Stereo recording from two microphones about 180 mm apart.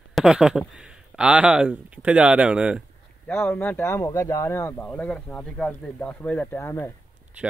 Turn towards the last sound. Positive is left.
turn(degrees=15)  # may be behind; listen again after turning